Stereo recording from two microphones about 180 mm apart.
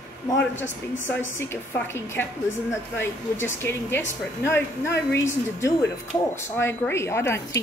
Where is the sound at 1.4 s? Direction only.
10° left (ahead or behind).